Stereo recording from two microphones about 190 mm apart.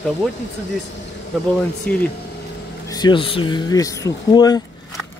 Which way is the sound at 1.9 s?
5° left (ahead or behind).